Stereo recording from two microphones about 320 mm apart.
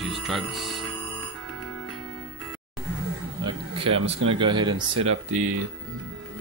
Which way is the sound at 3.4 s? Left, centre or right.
Centre.